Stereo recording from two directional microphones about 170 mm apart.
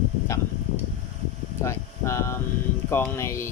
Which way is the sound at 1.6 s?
15° left (ahead or behind).